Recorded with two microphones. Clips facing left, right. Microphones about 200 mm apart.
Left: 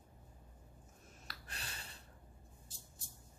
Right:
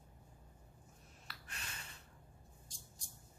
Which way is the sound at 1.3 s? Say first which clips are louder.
Left 1 dB; 35° left (ahead or behind).